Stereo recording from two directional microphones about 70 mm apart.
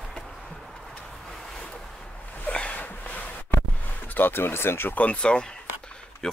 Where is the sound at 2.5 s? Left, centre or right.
Centre.